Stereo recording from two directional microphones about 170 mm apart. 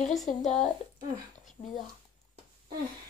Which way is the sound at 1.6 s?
30° left (ahead or behind).